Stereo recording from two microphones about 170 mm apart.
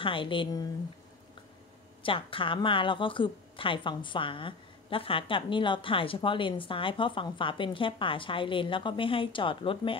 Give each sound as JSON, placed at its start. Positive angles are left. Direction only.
{"t": 0.0, "sound": "a woman's voice", "side_deg": 30}
{"t": 2.0, "sound": "a woman's voice", "side_deg": 30}